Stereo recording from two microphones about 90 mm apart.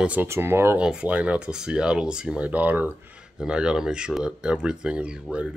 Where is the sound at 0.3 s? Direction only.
25° right (ahead or behind).